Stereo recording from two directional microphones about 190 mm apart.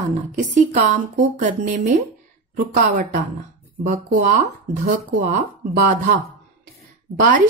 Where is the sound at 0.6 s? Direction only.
40° right (ahead or behind).